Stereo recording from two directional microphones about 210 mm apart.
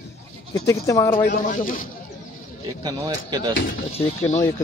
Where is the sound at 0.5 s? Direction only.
15° left (ahead or behind).